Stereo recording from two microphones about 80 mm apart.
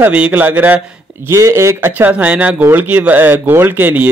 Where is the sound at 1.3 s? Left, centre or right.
Right.